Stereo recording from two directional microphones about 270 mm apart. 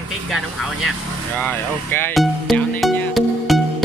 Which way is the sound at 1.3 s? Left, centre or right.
Centre.